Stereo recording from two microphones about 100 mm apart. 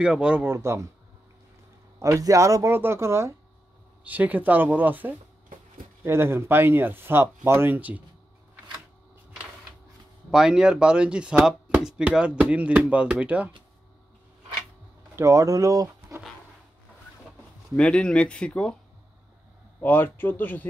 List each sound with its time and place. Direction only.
0.0 s speech: 10° right (ahead or behind)
0.5 s speech: 30° right (ahead or behind)
2.0 s speech: 30° right (ahead or behind)
4.0 s speech: 15° right (ahead or behind)
10.3 s speech: 5° right (ahead or behind)
15.1 s speech: 30° right (ahead or behind)
17.7 s speech: 10° left (ahead or behind)
19.8 s speech: 20° left (ahead or behind)